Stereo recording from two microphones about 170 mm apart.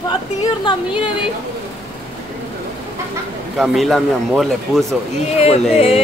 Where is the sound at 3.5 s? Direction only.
Centre (ahead or behind).